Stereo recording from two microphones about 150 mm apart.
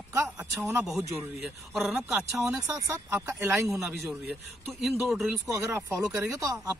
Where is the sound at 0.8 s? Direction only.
Centre (ahead or behind).